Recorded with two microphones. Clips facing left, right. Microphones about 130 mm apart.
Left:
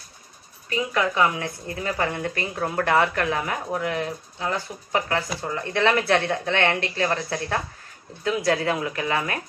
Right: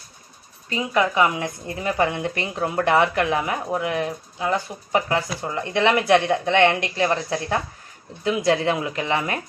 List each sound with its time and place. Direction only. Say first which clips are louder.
0.7 s a woman's voice: right 2 dB; 20° right (ahead or behind)